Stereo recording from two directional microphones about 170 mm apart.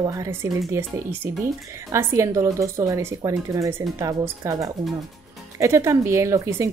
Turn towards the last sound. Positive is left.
turn(degrees=-15)  # may be behind; listen again after turning